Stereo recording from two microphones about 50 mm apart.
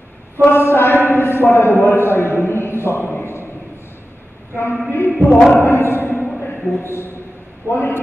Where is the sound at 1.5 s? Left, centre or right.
Left.